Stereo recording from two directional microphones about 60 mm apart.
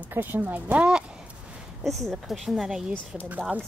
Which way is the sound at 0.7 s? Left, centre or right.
Centre.